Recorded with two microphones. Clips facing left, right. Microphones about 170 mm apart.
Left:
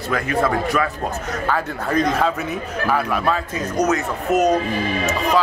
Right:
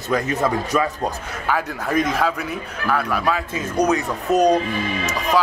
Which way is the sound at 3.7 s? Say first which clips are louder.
Right 1 dB; 15° right (ahead or behind).